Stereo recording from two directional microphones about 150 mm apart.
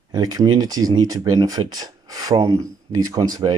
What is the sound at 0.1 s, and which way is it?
Speech, 25° right (ahead or behind).